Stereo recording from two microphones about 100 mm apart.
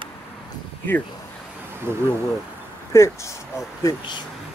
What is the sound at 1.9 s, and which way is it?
Speech, 20° right (ahead or behind).